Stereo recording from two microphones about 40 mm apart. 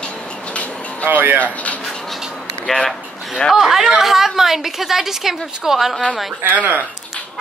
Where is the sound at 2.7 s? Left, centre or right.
Centre.